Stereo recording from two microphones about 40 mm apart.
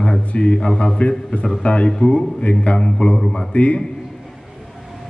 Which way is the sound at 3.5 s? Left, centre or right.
Left.